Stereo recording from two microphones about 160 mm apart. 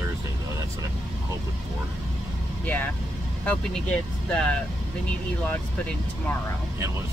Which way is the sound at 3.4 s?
10° left (ahead or behind).